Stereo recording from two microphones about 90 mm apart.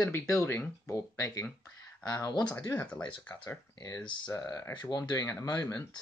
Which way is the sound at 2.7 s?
10° left (ahead or behind).